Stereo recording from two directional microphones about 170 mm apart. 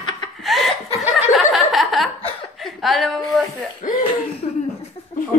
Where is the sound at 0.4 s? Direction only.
Centre (ahead or behind).